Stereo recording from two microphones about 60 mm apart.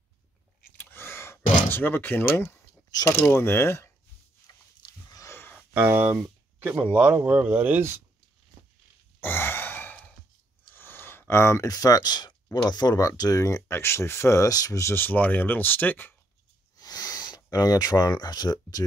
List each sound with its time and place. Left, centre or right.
0.7 s door: left
3.3 s speech: left
5.9 s speech: right
9.2 s sigh: left
10.7 s a sound: left
11.6 s speech: left
13.7 s speech: left
14.4 s speech: left
15.0 s speech: left
16.7 s a sound: left